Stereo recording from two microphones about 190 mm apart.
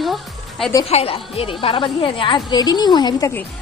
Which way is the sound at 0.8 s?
30° left (ahead or behind).